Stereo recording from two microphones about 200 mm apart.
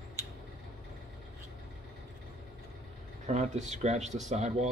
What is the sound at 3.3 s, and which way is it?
Speech, 35° right (ahead or behind).